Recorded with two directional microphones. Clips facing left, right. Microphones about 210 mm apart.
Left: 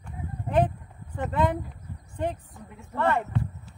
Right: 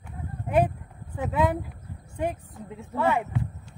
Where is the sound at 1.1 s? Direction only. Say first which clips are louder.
Right 1 dB; 5° right (ahead or behind).